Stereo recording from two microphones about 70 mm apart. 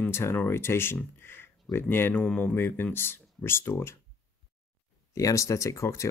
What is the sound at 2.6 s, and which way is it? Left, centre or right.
Speech, left.